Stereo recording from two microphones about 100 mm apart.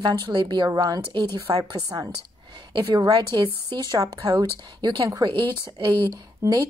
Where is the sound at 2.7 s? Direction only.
50° right (ahead or behind).